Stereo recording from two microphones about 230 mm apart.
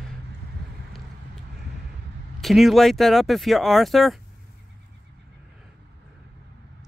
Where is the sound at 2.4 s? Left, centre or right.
Centre.